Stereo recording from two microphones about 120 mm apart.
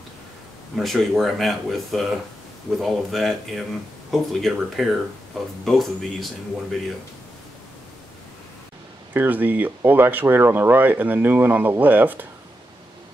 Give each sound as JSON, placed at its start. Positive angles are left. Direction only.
{"t": 0.7, "sound": "speech", "side_deg": 0}
{"t": 9.1, "sound": "speech", "side_deg": -15}